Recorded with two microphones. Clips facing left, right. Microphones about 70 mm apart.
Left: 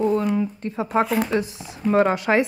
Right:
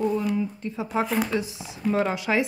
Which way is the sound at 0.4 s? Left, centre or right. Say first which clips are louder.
Left 4 dB; left.